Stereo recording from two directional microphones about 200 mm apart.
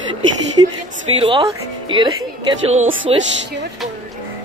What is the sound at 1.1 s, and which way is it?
Speech, 25° right (ahead or behind).